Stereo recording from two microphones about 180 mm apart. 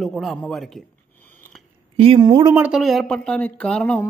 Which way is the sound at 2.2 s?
20° right (ahead or behind).